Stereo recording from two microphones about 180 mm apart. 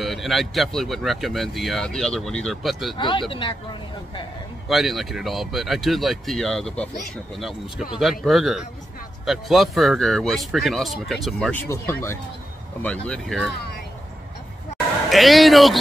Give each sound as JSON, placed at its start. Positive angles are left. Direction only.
{"t": 0.0, "sound": "speech", "side_deg": 0}
{"t": 3.0, "sound": "speech", "side_deg": 25}
{"t": 4.6, "sound": "speech", "side_deg": 0}
{"t": 8.0, "sound": "speech", "side_deg": 0}
{"t": 11.7, "sound": "speech", "side_deg": 15}
{"t": 15.0, "sound": "speech", "side_deg": 0}